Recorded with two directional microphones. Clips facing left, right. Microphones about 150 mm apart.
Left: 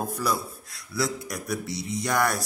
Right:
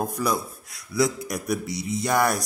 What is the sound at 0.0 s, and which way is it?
Speech, 20° right (ahead or behind).